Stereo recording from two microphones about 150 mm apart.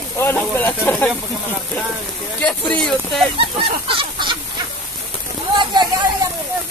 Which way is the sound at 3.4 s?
35° right (ahead or behind).